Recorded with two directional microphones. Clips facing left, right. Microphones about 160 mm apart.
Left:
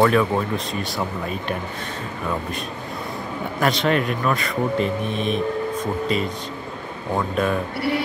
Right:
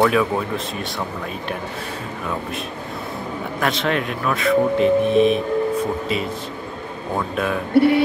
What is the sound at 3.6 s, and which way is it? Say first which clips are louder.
Speech: left 2 dB; centre (ahead or behind).